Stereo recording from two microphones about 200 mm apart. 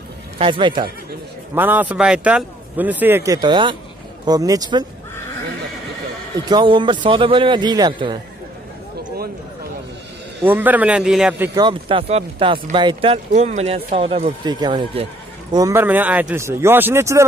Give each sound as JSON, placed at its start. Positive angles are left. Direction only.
{"t": 0.4, "sound": "a man's voice", "side_deg": -25}
{"t": 1.5, "sound": "a man's voice", "side_deg": -10}
{"t": 6.4, "sound": "a man's voice", "side_deg": -25}
{"t": 10.4, "sound": "a man's voice", "side_deg": -10}
{"t": 11.6, "sound": "a man's voice", "side_deg": -25}